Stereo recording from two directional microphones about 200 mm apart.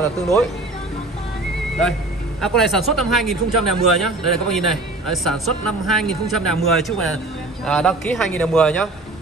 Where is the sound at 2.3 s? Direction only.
Centre (ahead or behind).